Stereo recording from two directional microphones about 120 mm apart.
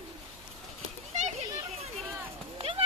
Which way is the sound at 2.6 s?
50° right (ahead or behind).